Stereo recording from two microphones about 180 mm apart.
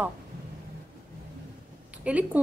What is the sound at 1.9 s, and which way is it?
Speech, 10° right (ahead or behind).